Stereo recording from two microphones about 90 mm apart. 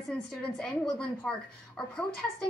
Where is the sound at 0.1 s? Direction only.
10° left (ahead or behind).